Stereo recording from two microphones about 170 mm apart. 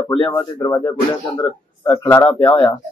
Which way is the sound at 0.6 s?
15° left (ahead or behind).